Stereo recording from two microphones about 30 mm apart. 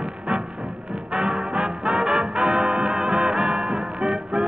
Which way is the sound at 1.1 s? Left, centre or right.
Right.